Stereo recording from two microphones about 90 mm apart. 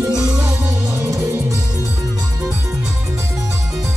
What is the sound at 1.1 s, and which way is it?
Music, 30° right (ahead or behind).